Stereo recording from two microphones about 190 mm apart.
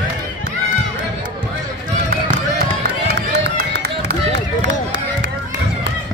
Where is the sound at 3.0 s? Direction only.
60° right (ahead or behind).